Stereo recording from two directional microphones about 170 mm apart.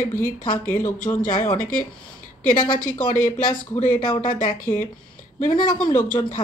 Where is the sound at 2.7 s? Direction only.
50° left (ahead or behind).